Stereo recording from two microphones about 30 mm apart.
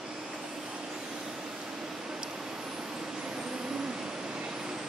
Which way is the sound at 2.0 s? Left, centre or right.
Right.